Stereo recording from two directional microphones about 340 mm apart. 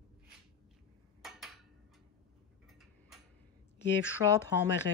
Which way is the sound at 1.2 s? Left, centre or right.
Centre.